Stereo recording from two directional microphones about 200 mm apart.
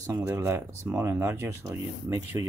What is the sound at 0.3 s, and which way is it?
Speech, 10° right (ahead or behind).